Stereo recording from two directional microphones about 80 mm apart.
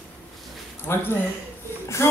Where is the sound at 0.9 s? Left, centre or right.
Left.